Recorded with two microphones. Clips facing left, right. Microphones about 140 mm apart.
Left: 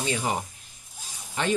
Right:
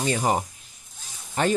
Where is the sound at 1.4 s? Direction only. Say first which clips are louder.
Right 4 dB; 45° right (ahead or behind).